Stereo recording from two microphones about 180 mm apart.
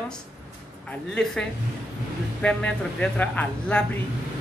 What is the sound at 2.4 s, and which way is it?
Speech, 5° left (ahead or behind).